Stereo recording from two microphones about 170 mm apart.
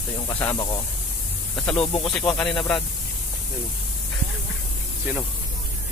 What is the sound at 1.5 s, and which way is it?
Speech, 5° left (ahead or behind).